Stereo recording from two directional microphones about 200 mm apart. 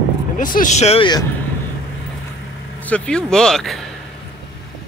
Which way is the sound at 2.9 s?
5° left (ahead or behind).